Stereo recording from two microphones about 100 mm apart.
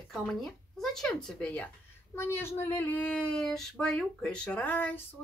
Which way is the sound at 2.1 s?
25° left (ahead or behind).